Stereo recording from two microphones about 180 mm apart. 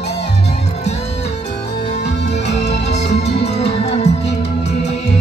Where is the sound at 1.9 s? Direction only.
40° left (ahead or behind).